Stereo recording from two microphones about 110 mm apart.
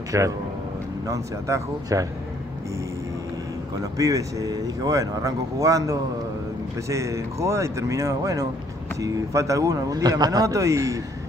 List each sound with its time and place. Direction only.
0.1 s speech: 25° right (ahead or behind)
3.8 s speech: 30° right (ahead or behind)